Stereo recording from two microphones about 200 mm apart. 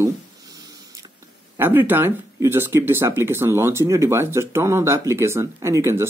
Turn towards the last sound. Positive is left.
turn(degrees=-15)  # may be behind; listen again after turning